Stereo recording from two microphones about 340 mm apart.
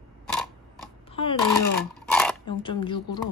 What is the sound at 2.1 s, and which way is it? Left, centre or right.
Zipper, centre.